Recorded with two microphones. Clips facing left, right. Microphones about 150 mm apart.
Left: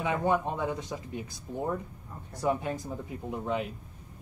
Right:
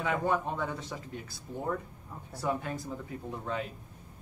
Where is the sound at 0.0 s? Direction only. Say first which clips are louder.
Left 2 dB; 20° left (ahead or behind).